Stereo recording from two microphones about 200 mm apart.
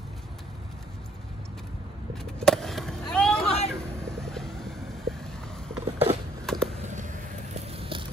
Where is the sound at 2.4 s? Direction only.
Centre (ahead or behind).